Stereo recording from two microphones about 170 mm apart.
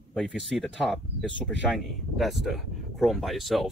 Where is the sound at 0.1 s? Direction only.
Centre (ahead or behind).